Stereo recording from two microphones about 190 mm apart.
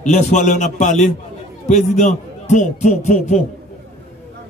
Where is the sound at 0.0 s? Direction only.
40° left (ahead or behind).